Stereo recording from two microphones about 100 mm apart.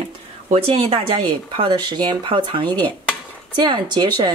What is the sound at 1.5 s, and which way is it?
Speech, 50° right (ahead or behind).